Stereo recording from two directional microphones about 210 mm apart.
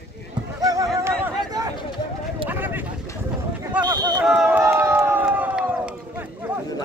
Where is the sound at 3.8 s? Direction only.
20° right (ahead or behind).